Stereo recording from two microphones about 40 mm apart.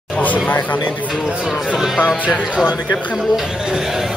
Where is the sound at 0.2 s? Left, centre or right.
Left.